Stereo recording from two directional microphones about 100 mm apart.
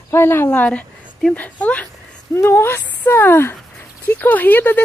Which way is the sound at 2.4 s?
25° left (ahead or behind).